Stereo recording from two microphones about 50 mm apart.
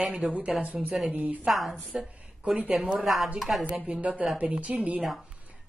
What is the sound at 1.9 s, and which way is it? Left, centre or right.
Speech, right.